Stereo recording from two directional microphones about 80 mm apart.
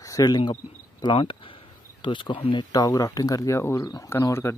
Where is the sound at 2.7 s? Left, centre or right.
Left.